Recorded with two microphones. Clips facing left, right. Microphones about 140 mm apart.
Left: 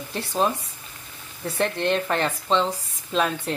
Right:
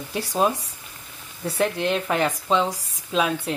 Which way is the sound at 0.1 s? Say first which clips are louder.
Right 2 dB; 10° right (ahead or behind).